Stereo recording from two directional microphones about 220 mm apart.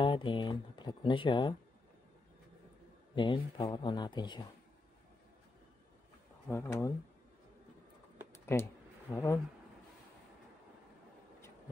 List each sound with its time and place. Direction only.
0.0 s speech: 20° left (ahead or behind)
3.2 s speech: 20° left (ahead or behind)
6.5 s speech: 10° left (ahead or behind)
8.5 s speech: 10° left (ahead or behind)